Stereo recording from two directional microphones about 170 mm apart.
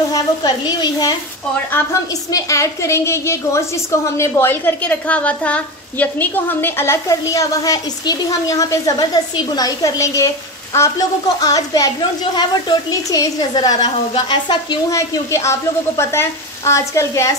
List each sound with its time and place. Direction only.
0.1 s a woman's voice: 25° left (ahead or behind)
2.3 s a woman's voice: 20° left (ahead or behind)